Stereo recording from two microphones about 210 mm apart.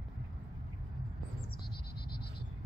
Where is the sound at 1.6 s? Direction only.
50° left (ahead or behind).